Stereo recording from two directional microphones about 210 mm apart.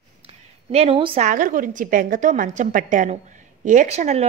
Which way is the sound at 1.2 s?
40° right (ahead or behind).